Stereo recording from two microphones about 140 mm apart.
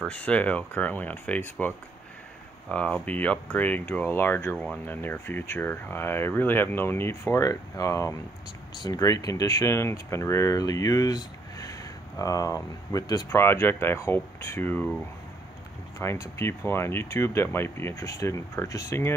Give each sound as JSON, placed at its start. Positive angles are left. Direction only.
{"t": 0.0, "sound": "speech", "side_deg": 10}
{"t": 2.7, "sound": "speech", "side_deg": 10}
{"t": 16.0, "sound": "speech", "side_deg": 20}